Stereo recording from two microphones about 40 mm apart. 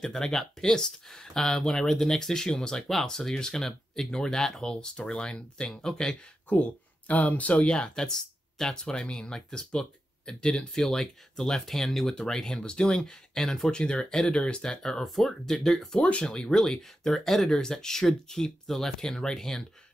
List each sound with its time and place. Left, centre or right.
0.0 s speech: centre
6.5 s speech: left
7.5 s speech: left; by 12.5 s centre
12.5 s speech: left
13.7 s speech: left
15.0 s speech: centre
16.0 s speech: left
16.3 s speech: centre